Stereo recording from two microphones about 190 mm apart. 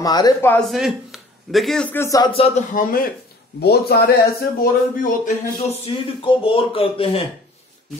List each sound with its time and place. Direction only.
0.0 s a man's voice: 20° left (ahead or behind)
2.7 s a man's voice: 45° left (ahead or behind)
3.6 s speech: 55° left (ahead or behind); by 7.2 s 30° left (ahead or behind)